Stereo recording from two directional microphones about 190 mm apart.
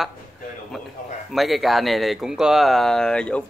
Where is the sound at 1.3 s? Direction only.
Centre (ahead or behind).